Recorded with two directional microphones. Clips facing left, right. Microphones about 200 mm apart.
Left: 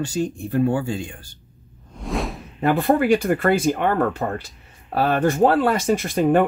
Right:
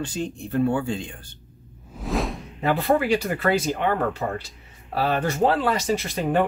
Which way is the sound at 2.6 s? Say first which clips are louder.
Left 3 dB; 50° left (ahead or behind).